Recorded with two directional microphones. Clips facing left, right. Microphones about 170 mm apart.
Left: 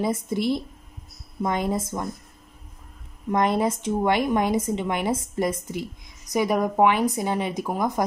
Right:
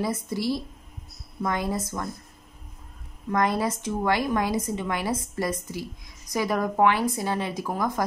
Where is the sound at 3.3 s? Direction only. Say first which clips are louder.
Left 3 dB; 20° left (ahead or behind).